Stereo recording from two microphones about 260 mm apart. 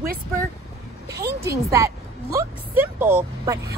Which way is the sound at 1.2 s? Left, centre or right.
Centre.